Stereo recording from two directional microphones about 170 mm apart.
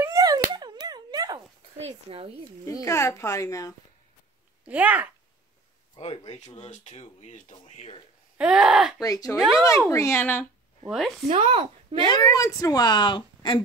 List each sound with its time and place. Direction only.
0.0 s a sound: 20° right (ahead or behind)
1.8 s speech: 35° right (ahead or behind)
2.6 s a child's voice: 15° left (ahead or behind)
4.6 s speech: 10° right (ahead or behind)
5.9 s speech: 40° left (ahead or behind)
8.4 s wail: 5° right (ahead or behind)
9.0 s speech: 20° left (ahead or behind)
9.4 s wail: centre (ahead or behind)
9.8 s a child's voice: 15° left (ahead or behind)
10.9 s wail: centre (ahead or behind)
11.2 s speech: 35° right (ahead or behind)
12.0 s speech: 25° left (ahead or behind)